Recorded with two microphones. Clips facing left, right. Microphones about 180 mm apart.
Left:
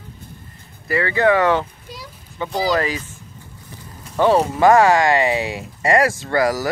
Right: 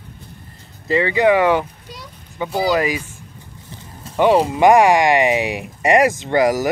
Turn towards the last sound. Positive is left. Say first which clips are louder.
# right 3 dB
turn(degrees=-20)  # may be behind; listen again after turning